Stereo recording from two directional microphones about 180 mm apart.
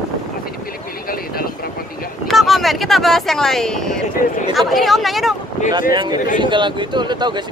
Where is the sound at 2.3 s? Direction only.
Centre (ahead or behind).